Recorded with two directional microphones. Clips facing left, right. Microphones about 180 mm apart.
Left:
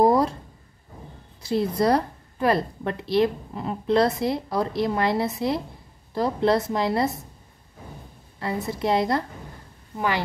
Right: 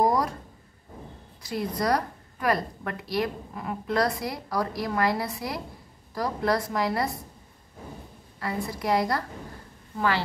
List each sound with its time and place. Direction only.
0.0 s a sound: 25° left (ahead or behind)
1.4 s a woman's voice: 25° left (ahead or behind)
8.4 s a woman's voice: 25° left (ahead or behind)